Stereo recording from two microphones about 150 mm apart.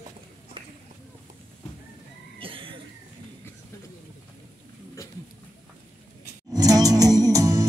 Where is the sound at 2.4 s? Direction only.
35° right (ahead or behind).